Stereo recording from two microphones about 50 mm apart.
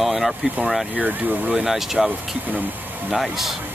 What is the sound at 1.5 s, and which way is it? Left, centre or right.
Speech, centre.